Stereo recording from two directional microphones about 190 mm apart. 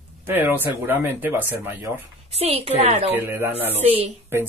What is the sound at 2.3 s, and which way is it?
Speech, 30° right (ahead or behind).